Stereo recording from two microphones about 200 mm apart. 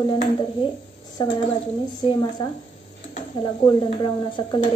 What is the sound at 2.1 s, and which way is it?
Speech, 20° left (ahead or behind).